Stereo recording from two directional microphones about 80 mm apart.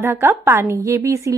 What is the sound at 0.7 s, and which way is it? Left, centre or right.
Speech, right.